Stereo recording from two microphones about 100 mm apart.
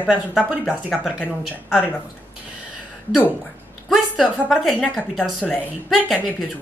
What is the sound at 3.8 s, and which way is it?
Speech, centre (ahead or behind).